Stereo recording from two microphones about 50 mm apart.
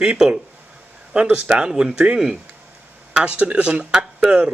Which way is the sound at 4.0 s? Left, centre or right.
Centre.